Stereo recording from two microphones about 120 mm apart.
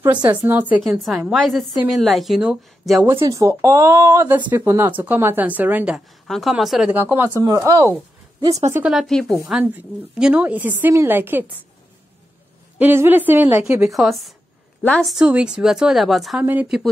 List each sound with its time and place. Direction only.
0.3 s a woman's voice: 15° right (ahead or behind)
0.8 s a woman's voice: 5° right (ahead or behind)
3.1 s a woman's voice: 25° right (ahead or behind)
6.2 s a woman's voice: centre (ahead or behind)
6.9 s a woman's voice: 15° right (ahead or behind)
7.4 s speech: 30° right (ahead or behind)
8.9 s a woman's voice: 5° left (ahead or behind)
9.5 s a woman's voice: 10° right (ahead or behind)
12.7 s a woman's voice: 15° right (ahead or behind)
13.8 s a woman's voice: centre (ahead or behind)
14.8 s a woman's voice: 15° left (ahead or behind)
15.0 s a woman's voice: 10° right (ahead or behind)
16.4 s a woman's voice: 10° right (ahead or behind)